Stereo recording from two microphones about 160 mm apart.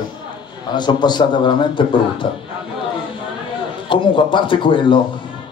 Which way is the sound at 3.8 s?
30° left (ahead or behind).